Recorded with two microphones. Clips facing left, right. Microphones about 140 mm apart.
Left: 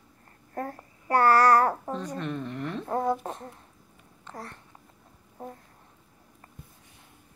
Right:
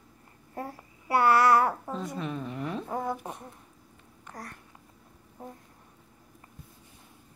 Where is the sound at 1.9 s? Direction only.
5° right (ahead or behind).